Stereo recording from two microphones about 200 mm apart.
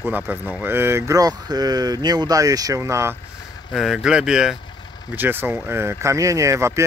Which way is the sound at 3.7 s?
Centre (ahead or behind).